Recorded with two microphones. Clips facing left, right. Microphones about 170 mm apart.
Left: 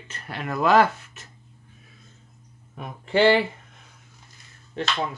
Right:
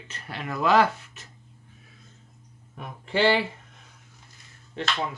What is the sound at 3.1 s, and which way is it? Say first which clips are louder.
Speech: left 4 dB; 50° left (ahead or behind).